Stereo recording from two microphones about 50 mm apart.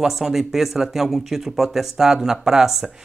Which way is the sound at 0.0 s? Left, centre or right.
Centre.